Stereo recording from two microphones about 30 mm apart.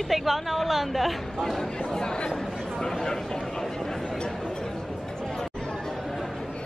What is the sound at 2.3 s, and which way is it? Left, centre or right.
Speech, centre.